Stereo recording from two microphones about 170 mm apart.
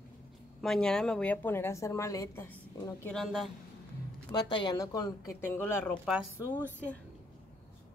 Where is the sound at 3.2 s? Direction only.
Centre (ahead or behind).